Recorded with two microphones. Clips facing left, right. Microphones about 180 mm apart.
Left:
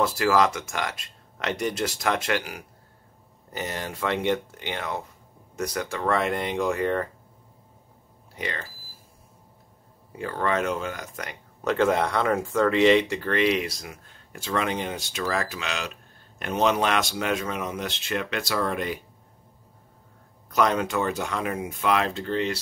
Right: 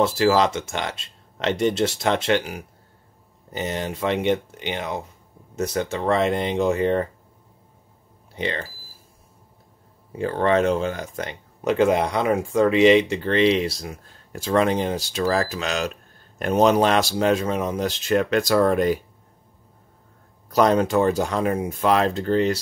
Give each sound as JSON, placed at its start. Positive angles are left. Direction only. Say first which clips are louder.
{"t": 0.0, "sound": "speech", "louder": "right 3 dB", "side_deg": -25}
{"t": 8.4, "sound": "speech", "louder": "right 6 dB", "side_deg": -30}
{"t": 10.1, "sound": "speech", "louder": "right 6 dB", "side_deg": -30}
{"t": 11.6, "sound": "speech", "louder": "right 3 dB", "side_deg": -15}
{"t": 20.4, "sound": "speech", "louder": "right 5 dB", "side_deg": -35}